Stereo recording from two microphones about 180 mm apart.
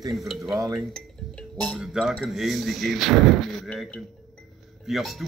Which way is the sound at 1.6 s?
Centre (ahead or behind).